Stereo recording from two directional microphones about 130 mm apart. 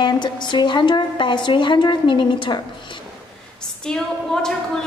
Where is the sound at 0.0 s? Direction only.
35° left (ahead or behind).